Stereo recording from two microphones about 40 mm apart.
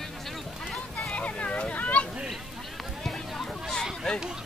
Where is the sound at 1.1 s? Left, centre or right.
Left.